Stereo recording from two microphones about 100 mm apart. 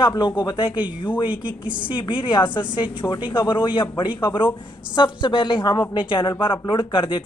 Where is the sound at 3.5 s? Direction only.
50° left (ahead or behind).